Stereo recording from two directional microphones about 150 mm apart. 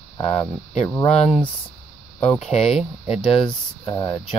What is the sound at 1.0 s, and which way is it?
Speech, 45° left (ahead or behind).